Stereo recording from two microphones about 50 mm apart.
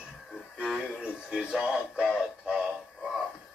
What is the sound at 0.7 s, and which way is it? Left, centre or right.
Synthetic singing, centre.